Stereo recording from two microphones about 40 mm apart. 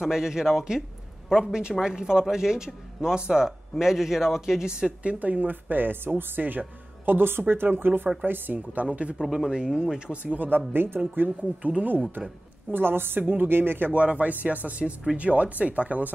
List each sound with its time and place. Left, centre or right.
0.0 s speech: centre
5.0 s speech: right
7.1 s speech: right
8.5 s speech: right
9.2 s speech: centre
9.5 s speech: right
10.1 s speech: right
10.7 s speech: right
11.2 s speech: right
12.7 s speech: right
13.2 s speech: right
13.9 s speech: right